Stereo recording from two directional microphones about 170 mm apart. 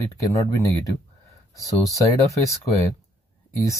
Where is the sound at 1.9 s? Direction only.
20° left (ahead or behind).